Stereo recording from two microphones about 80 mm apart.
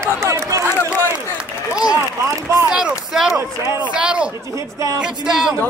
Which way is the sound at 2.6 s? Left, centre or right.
Centre.